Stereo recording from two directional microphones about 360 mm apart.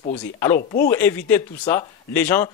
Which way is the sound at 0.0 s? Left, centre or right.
Centre.